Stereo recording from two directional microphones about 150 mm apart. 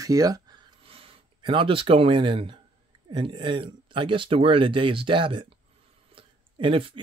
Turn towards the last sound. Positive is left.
turn(degrees=-35)  # may be behind; listen again after turning